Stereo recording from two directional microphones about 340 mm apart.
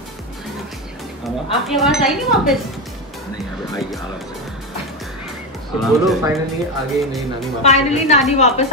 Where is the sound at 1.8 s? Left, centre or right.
Centre.